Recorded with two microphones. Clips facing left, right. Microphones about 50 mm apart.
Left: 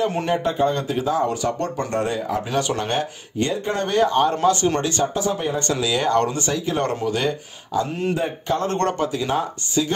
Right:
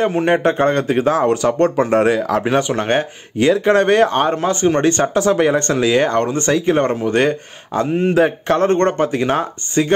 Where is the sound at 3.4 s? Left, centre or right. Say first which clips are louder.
Right 10 dB; right.